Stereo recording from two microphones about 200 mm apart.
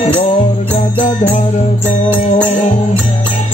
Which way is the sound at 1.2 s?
35° left (ahead or behind).